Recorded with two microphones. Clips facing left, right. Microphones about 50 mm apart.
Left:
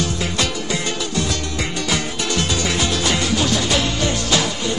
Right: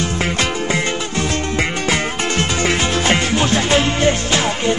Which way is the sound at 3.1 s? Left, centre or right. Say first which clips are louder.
Right 4 dB; right.